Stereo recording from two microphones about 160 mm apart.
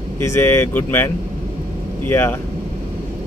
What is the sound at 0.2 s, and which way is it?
Speech, 15° left (ahead or behind).